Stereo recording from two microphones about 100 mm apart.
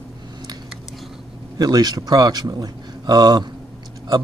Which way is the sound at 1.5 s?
40° right (ahead or behind).